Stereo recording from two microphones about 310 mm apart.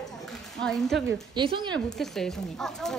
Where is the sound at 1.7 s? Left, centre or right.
Centre.